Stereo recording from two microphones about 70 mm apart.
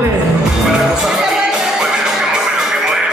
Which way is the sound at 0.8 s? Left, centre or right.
Centre.